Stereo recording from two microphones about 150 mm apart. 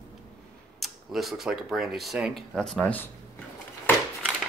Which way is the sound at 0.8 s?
Centre (ahead or behind).